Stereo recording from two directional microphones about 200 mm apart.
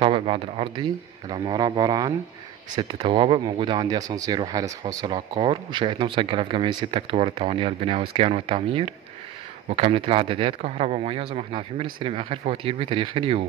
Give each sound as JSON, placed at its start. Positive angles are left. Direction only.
{"t": 0.0, "sound": "speech", "side_deg": -25}